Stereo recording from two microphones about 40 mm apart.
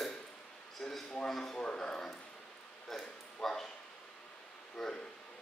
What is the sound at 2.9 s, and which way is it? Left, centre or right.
Bow-wow, centre.